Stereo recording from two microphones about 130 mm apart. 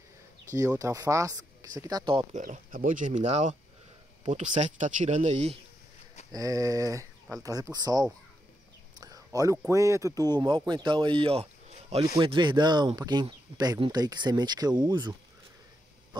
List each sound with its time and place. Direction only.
0.6 s speech: 25° right (ahead or behind)
2.3 s speech: 80° right; by 5.6 s 55° right (ahead or behind)
6.3 s speech: 25° right (ahead or behind)
9.0 s a sound: 25° right (ahead or behind)
9.7 s speech: 25° right (ahead or behind)